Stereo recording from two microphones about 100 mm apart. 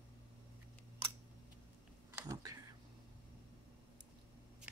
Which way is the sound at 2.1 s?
35° right (ahead or behind).